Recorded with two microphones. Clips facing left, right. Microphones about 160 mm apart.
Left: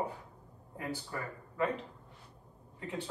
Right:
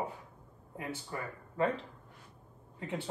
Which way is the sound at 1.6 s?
30° right (ahead or behind).